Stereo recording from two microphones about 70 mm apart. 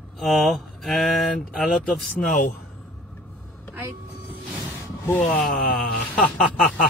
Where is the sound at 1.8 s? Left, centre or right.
Centre.